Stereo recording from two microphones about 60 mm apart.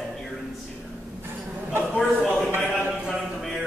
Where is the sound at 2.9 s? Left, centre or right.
Centre.